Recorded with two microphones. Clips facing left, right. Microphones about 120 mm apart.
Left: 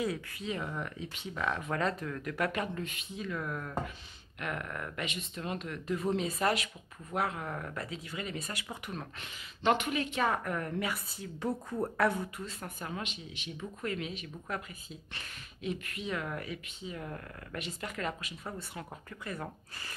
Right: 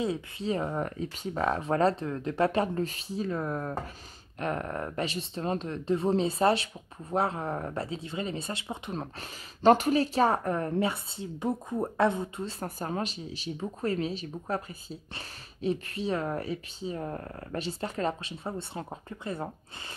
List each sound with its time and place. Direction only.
0.0 s speech: 30° right (ahead or behind)